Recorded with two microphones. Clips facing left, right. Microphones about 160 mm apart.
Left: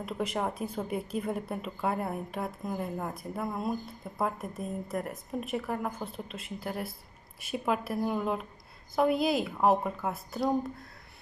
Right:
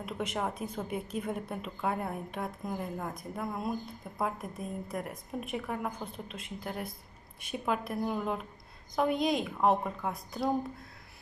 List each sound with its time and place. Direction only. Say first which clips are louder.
0.0 s a woman's voice: left 2 dB; centre (ahead or behind)